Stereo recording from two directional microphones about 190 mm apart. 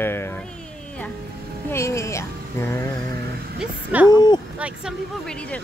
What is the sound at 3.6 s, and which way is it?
A woman's voice, 5° right (ahead or behind).